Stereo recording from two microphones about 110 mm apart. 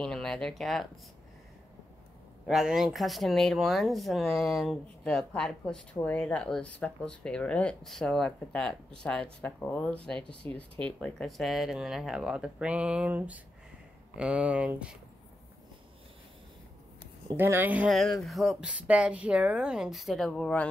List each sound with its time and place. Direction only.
0.0 s speech: 5° left (ahead or behind)
2.4 s a woman's voice: 5° right (ahead or behind)
17.4 s a woman's voice: 20° right (ahead or behind)
17.8 s speech: centre (ahead or behind)
18.7 s a woman's voice: 10° right (ahead or behind); by 20.6 s 10° left (ahead or behind)